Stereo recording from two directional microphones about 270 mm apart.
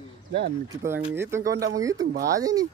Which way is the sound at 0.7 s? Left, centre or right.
Centre.